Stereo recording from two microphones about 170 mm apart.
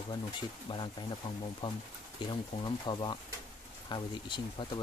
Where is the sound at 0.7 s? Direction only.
30° left (ahead or behind).